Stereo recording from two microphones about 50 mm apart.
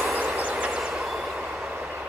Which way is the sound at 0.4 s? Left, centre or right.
Right.